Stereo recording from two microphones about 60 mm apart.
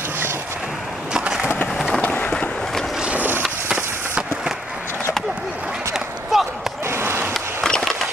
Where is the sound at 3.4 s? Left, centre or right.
Centre.